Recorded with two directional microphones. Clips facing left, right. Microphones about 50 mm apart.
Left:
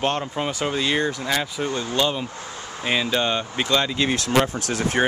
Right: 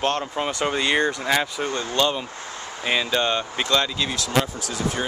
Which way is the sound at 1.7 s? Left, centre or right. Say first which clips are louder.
Left 1 dB; centre.